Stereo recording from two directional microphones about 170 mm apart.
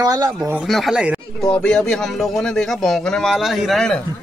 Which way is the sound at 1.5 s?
5° left (ahead or behind).